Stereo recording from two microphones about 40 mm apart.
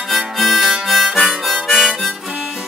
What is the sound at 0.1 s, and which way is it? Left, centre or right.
Harmonica, centre.